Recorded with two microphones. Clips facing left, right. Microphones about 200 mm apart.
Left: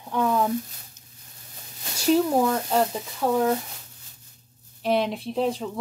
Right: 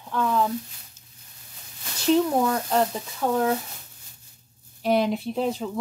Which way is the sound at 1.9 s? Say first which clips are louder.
Even; 10° left (ahead or behind).